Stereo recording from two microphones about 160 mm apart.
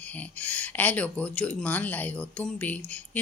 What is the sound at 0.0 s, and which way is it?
Speech, 10° left (ahead or behind).